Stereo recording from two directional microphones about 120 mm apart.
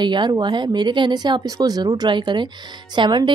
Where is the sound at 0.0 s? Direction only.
40° right (ahead or behind).